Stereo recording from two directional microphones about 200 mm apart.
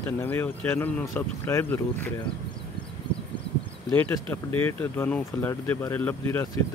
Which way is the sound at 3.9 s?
10° left (ahead or behind).